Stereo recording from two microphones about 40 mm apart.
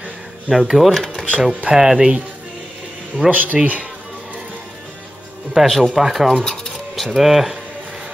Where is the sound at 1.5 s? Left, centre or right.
Right.